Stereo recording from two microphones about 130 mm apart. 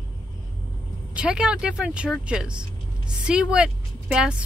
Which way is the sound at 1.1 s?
10° right (ahead or behind).